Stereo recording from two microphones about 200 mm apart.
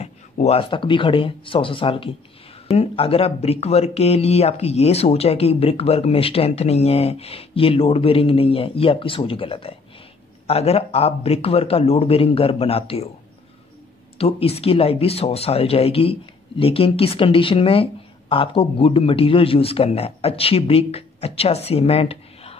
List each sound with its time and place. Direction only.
0.0 s speech: 30° left (ahead or behind)
14.1 s speech: 30° left (ahead or behind)